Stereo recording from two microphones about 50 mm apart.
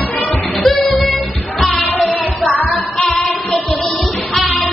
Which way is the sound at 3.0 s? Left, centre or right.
Centre.